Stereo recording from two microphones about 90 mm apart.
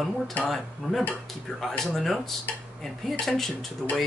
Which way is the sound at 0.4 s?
Centre (ahead or behind).